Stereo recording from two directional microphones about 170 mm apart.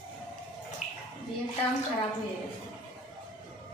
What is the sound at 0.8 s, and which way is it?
Bathtub, 45° left (ahead or behind).